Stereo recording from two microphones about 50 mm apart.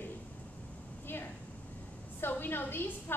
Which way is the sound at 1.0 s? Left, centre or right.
Left.